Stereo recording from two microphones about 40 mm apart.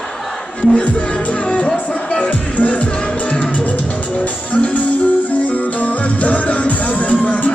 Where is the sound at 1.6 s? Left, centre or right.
Left.